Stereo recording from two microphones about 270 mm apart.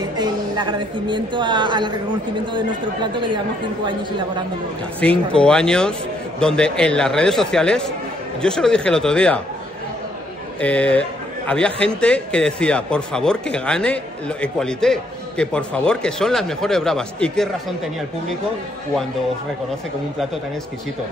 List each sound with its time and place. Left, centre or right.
0.2 s a woman's voice: centre
5.0 s a man's voice: centre
10.6 s a man's voice: centre